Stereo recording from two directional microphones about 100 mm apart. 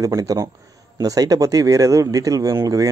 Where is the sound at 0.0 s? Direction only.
35° right (ahead or behind).